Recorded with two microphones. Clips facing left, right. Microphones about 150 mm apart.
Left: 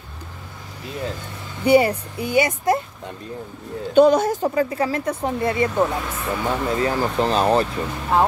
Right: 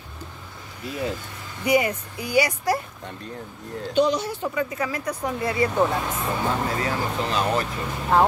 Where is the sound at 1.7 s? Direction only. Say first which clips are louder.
Left 6 dB; 30° left (ahead or behind).